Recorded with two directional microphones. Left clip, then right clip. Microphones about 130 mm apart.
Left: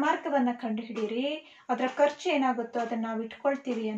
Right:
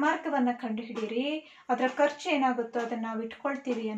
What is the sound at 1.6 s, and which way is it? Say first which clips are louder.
A woman's voice: left 1 dB; 25° left (ahead or behind).